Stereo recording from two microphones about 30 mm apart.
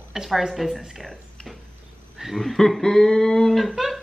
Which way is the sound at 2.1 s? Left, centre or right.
Centre.